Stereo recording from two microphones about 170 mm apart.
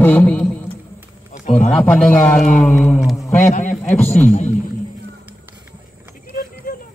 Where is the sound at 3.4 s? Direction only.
45° left (ahead or behind).